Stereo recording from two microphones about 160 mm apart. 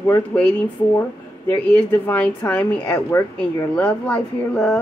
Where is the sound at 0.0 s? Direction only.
10° left (ahead or behind).